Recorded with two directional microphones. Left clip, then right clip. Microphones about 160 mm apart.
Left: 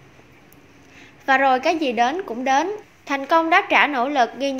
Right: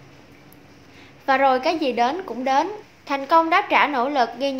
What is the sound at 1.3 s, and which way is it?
A woman's voice, 15° left (ahead or behind).